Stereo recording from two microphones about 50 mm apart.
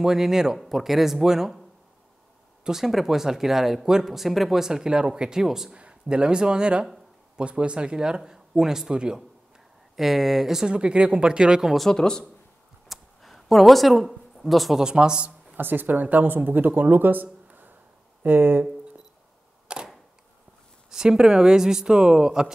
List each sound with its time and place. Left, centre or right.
0.0 s speech: centre
2.6 s speech: centre
5.8 s speech: centre
11.9 s speech: centre
12.8 s a sound: centre
14.8 s speech: centre
15.5 s speech: right
19.7 s camera: centre
20.9 s speech: centre